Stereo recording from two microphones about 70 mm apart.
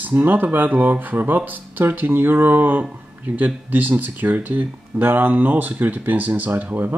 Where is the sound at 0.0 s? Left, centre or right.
Right.